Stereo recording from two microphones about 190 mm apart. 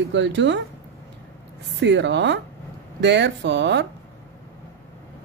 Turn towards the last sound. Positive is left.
turn(degrees=-65)  # may be behind; listen again after turning